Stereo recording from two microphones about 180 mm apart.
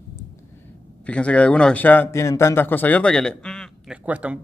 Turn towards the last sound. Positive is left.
turn(degrees=-5)  # may be behind; listen again after turning